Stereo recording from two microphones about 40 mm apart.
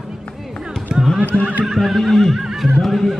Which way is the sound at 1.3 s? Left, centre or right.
Left.